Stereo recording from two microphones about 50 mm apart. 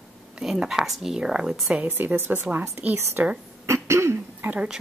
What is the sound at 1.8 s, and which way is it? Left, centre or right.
A woman's voice, right.